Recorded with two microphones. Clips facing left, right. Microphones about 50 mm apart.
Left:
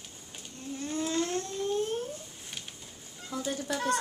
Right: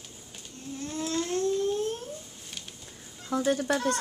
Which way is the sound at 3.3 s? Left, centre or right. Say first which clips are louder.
Right 7 dB; right.